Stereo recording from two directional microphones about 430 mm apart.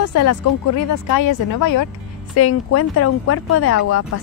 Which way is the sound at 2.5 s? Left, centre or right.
Left.